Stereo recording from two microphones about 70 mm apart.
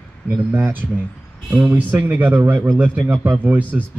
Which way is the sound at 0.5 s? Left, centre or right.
Right.